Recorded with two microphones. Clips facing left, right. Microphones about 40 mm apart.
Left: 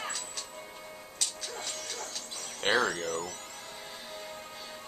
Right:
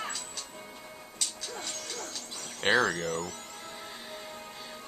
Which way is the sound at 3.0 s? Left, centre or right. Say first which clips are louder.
Right 1 dB; right.